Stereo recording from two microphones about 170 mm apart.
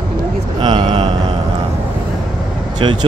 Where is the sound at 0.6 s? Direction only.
30° right (ahead or behind).